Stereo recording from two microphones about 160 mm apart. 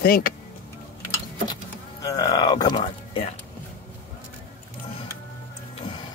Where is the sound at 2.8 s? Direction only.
40° left (ahead or behind).